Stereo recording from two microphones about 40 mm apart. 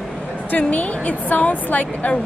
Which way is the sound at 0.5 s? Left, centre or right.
Left.